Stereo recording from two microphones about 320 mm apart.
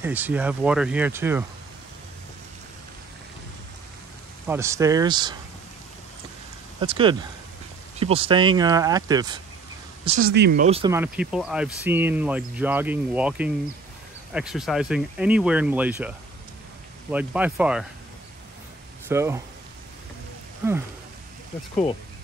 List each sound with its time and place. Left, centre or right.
0.0 s speech: centre
4.5 s speech: centre
6.8 s speech: centre
10.0 s speech: right; by 16.1 s centre
17.1 s speech: centre
19.0 s speech: centre